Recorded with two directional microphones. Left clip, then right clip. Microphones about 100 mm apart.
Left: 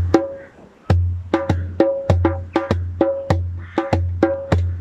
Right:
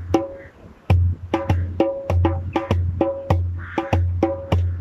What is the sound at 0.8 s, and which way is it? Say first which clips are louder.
Music: left 2 dB; 20° right (ahead or behind).